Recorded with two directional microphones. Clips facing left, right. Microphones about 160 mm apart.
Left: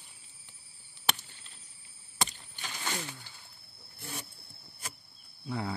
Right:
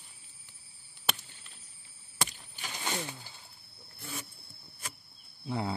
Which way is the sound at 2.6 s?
15° right (ahead or behind).